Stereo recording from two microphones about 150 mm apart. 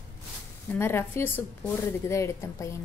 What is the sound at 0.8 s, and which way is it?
A woman's voice, 15° left (ahead or behind).